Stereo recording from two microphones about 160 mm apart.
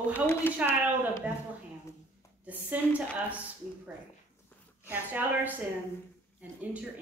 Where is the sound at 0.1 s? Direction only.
15° left (ahead or behind).